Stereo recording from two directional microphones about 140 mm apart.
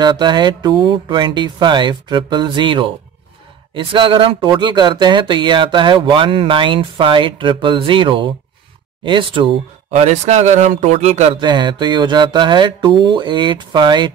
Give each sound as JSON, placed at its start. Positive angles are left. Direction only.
{"t": 0.0, "sound": "speech", "side_deg": -30}
{"t": 9.8, "sound": "speech", "side_deg": -50}
{"t": 11.3, "sound": "speech", "side_deg": -35}